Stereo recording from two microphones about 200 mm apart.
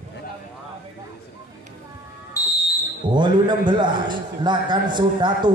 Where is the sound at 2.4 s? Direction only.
15° left (ahead or behind).